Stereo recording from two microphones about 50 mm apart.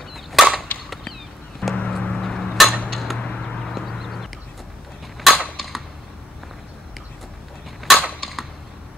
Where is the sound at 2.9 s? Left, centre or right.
Centre.